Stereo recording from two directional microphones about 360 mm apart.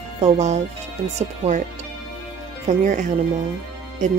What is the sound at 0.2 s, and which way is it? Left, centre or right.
Speech, centre.